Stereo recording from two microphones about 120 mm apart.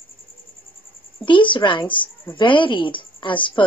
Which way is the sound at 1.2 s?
45° left (ahead or behind).